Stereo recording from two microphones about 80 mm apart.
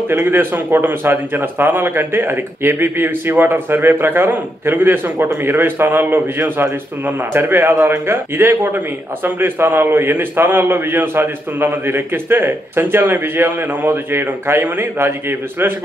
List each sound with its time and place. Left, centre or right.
0.1 s a man's voice: right